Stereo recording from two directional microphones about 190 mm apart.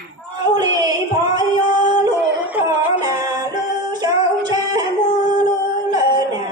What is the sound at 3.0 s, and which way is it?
Music, 20° right (ahead or behind).